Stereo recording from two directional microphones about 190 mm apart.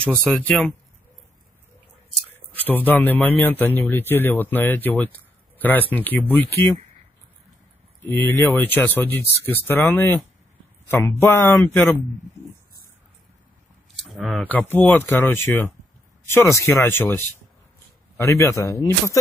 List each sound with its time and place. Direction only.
0.2 s speech: 5° left (ahead or behind)
2.5 s speech: 10° left (ahead or behind)
8.1 s speech: 10° left (ahead or behind)
13.9 s speech: centre (ahead or behind); by 19.1 s 15° left (ahead or behind)